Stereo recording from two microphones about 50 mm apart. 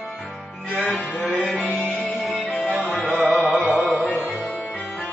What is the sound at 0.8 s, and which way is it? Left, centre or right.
Music, centre.